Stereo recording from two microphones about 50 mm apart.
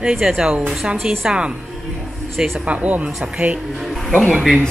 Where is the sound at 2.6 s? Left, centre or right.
Right.